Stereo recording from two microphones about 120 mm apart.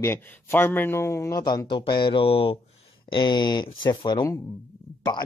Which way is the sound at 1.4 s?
40° left (ahead or behind).